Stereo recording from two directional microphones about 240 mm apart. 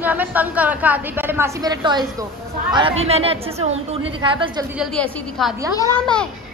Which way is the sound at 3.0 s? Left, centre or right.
Right.